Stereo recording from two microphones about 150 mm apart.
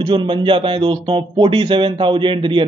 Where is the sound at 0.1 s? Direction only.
35° right (ahead or behind).